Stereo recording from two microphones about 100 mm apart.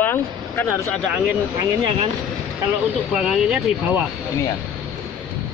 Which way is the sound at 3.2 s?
Centre (ahead or behind).